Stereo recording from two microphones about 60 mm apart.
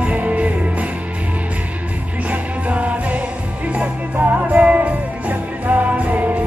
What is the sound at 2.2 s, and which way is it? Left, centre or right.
Music, right.